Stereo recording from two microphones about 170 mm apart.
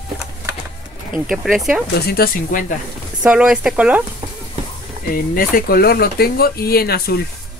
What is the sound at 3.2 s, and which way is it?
Speech, 5° right (ahead or behind).